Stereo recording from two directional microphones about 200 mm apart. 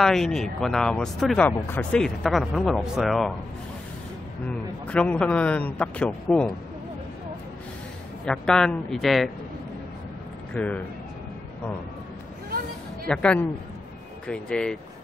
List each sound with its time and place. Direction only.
0.0 s speech: centre (ahead or behind)
4.5 s a man's voice: 5° left (ahead or behind)
8.3 s speech: 5° left (ahead or behind)
10.5 s speech: 5° left (ahead or behind)
12.4 s a sound: 50° right (ahead or behind)
13.1 s speech: 5° left (ahead or behind)